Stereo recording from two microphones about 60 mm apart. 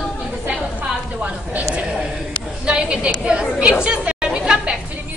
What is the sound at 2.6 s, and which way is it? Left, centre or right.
A woman's voice, centre.